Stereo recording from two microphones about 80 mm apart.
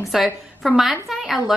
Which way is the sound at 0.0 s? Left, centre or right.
Centre.